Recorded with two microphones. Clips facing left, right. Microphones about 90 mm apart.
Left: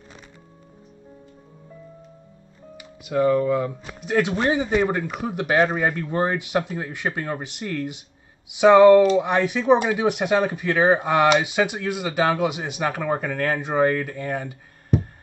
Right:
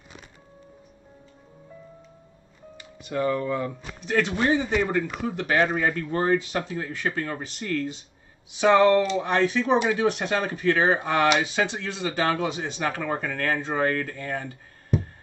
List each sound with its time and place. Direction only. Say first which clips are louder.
2.8 s speech: left 6 dB; 10° left (ahead or behind)